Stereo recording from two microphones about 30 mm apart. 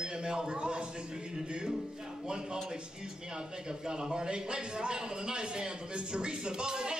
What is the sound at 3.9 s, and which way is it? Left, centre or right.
A man's voice, right.